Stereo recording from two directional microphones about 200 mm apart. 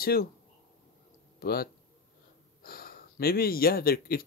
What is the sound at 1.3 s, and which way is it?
Speech, 50° left (ahead or behind).